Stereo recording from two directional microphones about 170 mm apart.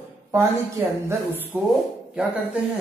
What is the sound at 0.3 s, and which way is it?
Speech, 15° right (ahead or behind).